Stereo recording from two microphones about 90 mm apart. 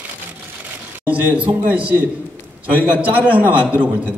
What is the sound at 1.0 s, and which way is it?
A man's voice, 15° right (ahead or behind).